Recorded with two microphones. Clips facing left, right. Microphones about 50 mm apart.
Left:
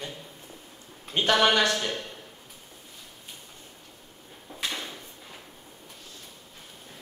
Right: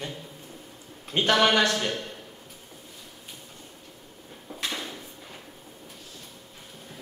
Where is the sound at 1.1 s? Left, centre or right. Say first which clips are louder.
Right 2 dB; right.